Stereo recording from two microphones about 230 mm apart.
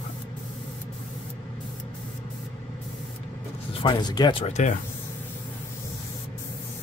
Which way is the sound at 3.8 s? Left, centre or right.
Centre.